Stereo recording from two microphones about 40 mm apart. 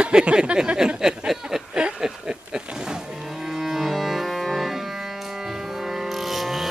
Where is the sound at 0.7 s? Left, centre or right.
Centre.